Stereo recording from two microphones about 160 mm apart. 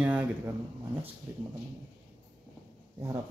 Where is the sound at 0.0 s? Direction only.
10° right (ahead or behind).